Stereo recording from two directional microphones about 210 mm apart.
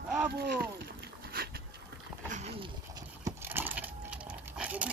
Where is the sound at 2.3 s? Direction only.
30° right (ahead or behind).